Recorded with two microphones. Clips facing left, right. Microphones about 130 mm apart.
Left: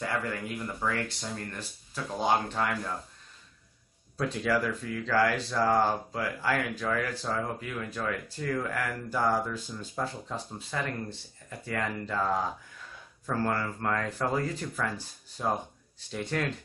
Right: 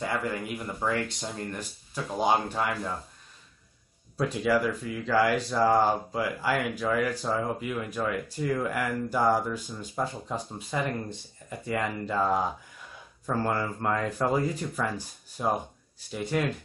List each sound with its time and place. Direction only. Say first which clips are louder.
0.0 s speech: right 2 dB; 20° right (ahead or behind)
4.2 s speech: right 3 dB; 10° right (ahead or behind)